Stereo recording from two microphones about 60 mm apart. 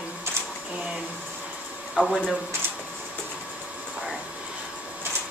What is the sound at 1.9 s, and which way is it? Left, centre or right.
Speech, centre.